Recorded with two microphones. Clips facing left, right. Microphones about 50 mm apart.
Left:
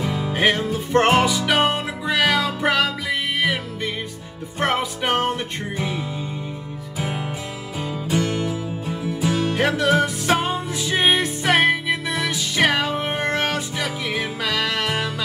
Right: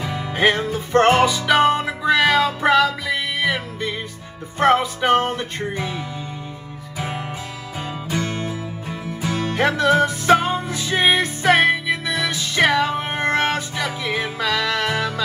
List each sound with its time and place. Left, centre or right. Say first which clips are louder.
0.0 s music: right 1 dB; right
4.6 s music: right 5 dB; right
8.1 s music: left 3 dB; right